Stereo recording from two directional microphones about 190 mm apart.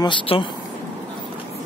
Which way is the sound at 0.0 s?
25° left (ahead or behind).